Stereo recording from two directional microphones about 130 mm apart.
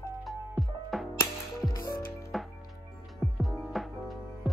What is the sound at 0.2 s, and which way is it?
Music, centre (ahead or behind).